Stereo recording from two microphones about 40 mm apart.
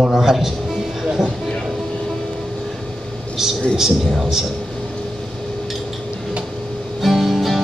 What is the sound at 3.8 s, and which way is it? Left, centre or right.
Speech, centre.